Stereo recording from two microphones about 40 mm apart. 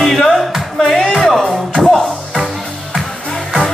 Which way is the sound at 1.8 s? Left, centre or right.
Centre.